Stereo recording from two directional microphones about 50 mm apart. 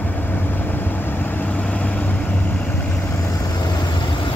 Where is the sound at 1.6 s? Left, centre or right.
Left.